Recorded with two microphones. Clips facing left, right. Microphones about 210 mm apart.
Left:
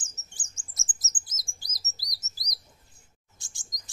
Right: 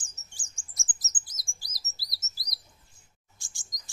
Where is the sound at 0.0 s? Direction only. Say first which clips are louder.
Left 2 dB; 20° left (ahead or behind).